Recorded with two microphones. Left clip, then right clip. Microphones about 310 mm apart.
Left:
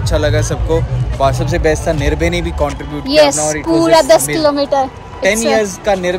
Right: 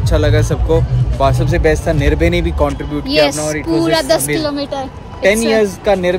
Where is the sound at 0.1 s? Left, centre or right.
Centre.